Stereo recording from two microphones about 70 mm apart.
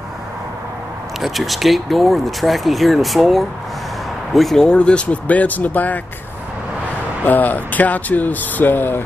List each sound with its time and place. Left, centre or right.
1.2 s speech: centre
4.6 s speech: centre
7.2 s speech: left